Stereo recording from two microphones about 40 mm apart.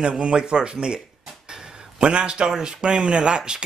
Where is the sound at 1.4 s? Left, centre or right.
Centre.